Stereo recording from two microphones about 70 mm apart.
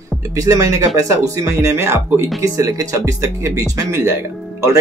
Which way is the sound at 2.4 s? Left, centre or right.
Right.